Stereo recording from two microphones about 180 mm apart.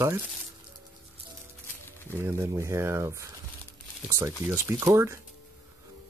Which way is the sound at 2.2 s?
15° right (ahead or behind).